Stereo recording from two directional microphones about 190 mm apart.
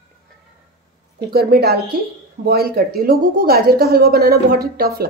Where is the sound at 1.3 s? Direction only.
55° right (ahead or behind).